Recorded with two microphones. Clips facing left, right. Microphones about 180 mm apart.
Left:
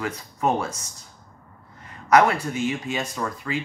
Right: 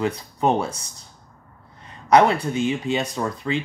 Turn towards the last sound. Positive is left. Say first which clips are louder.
# right 4 dB
turn(degrees=-25)  # may be behind; listen again after turning